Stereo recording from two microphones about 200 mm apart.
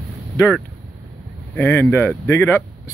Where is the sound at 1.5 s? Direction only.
10° left (ahead or behind).